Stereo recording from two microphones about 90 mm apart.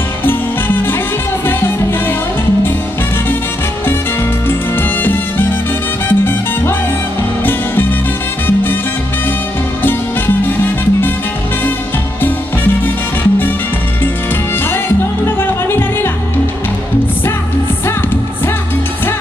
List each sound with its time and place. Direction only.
0.3 s music: 25° left (ahead or behind)
6.0 s salsa music: 25° left (ahead or behind)
9.8 s music: 25° left (ahead or behind)
15.2 s music: 25° left (ahead or behind)